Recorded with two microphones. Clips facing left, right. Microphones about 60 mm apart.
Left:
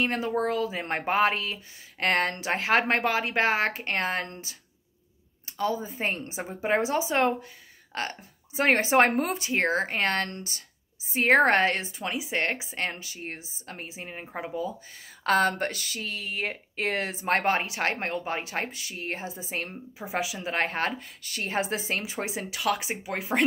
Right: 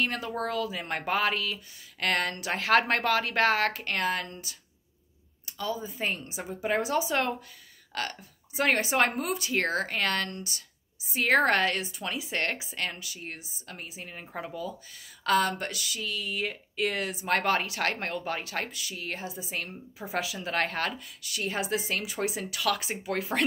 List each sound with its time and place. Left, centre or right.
0.0 s speech: left
5.6 s speech: left
15.2 s speech: left